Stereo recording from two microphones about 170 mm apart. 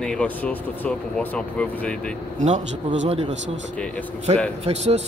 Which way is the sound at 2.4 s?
45° right (ahead or behind).